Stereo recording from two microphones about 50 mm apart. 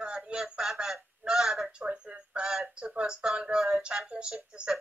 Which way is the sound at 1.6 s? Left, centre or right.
Right.